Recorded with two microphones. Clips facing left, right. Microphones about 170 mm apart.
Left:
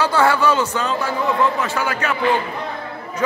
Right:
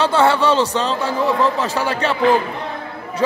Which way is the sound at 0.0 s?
25° right (ahead or behind).